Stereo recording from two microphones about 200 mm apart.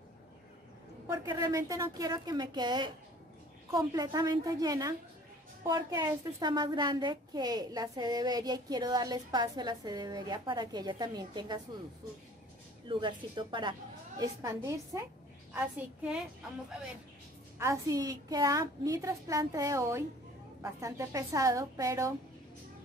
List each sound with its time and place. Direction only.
1.0 s a woman's voice: 20° right (ahead or behind)
12.8 s a woman's voice: 25° right (ahead or behind)
15.5 s a woman's voice: 5° right (ahead or behind)
17.6 s a woman's voice: 15° right (ahead or behind)